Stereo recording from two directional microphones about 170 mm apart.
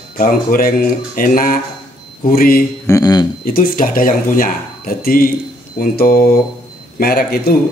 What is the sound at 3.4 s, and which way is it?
A man's voice, 55° left (ahead or behind).